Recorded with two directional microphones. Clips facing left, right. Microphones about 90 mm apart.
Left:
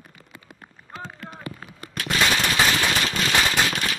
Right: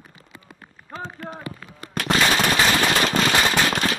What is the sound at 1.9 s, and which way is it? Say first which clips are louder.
Machine gun: right 3 dB; 55° right (ahead or behind).